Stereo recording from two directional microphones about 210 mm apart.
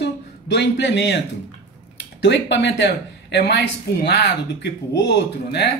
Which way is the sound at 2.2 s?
55° left (ahead or behind).